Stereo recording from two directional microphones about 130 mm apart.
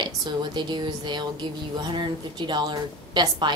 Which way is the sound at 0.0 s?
35° right (ahead or behind).